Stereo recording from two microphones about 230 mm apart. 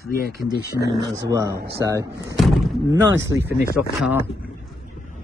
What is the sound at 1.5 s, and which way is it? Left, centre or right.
Speech, right.